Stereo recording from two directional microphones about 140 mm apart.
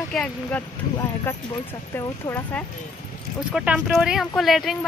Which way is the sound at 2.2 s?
20° left (ahead or behind).